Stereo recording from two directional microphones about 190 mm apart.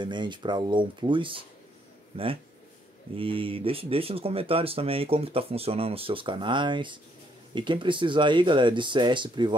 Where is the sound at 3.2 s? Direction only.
30° right (ahead or behind).